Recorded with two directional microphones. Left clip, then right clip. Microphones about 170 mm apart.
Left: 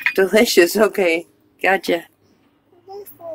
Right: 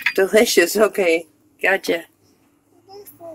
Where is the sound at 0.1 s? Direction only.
25° left (ahead or behind).